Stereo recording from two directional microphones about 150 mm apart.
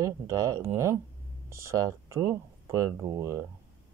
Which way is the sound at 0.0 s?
20° right (ahead or behind).